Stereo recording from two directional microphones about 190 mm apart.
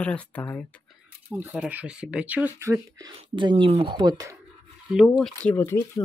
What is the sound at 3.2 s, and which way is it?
Speech, 25° right (ahead or behind).